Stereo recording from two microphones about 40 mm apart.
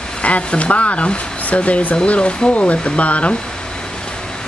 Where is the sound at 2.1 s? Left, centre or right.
Left.